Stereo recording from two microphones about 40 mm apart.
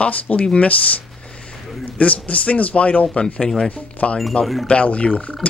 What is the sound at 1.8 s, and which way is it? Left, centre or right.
Speech, left.